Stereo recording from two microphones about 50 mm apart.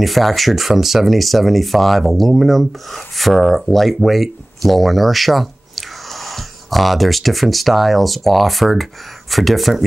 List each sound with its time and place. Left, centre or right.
0.0 s speech: centre